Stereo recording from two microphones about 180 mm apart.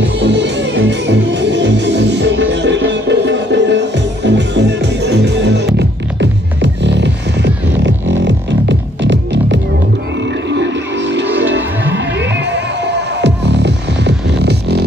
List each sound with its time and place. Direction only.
0.2 s music: 70° right (ahead or behind)
6.6 s music: 75° right (ahead or behind)
12.8 s music: 70° right (ahead or behind)